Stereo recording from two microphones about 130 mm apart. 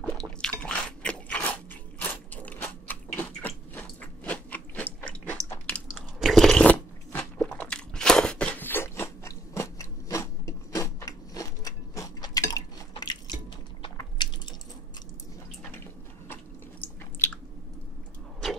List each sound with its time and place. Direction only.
0.4 s crunch: 5° left (ahead or behind)
6.1 s biting: centre (ahead or behind)
7.1 s crunch: 15° left (ahead or behind); by 13.4 s 35° left (ahead or behind)
14.1 s squish: 35° left (ahead or behind)